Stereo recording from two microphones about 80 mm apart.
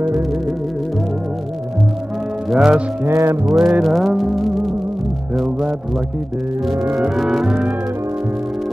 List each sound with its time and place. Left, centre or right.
2.5 s music: centre
3.1 s music: right
3.4 s music: centre
7.0 s music: centre